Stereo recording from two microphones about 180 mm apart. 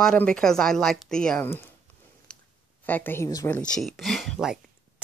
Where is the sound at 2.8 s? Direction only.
10° left (ahead or behind).